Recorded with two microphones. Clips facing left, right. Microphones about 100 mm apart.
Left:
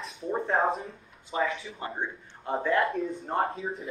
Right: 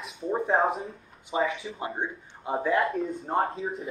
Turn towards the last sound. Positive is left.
turn(degrees=0)  # may be behind; listen again after turning